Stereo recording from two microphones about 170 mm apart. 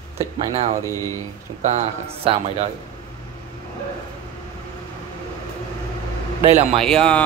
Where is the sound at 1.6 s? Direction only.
35° right (ahead or behind).